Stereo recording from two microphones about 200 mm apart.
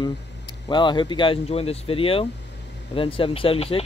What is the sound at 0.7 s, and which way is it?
Speech, 25° left (ahead or behind).